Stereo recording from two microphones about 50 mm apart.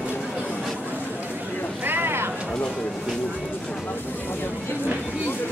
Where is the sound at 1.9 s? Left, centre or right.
Right.